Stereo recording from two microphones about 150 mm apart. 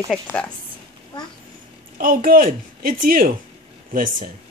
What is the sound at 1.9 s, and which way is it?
A woman's voice, 75° right (ahead or behind).